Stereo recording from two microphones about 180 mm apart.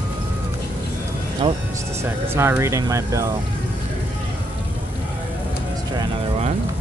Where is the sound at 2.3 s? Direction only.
15° right (ahead or behind).